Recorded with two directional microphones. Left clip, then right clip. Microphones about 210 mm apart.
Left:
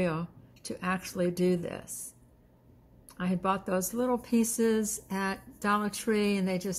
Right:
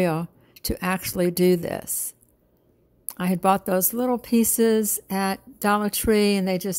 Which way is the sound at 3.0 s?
60° right (ahead or behind).